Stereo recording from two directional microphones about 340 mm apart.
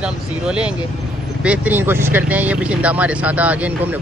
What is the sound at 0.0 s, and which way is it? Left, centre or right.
Speech, centre.